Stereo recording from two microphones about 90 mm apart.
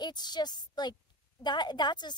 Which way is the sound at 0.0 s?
55° left (ahead or behind).